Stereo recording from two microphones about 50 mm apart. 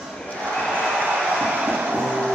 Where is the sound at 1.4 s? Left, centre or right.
Centre.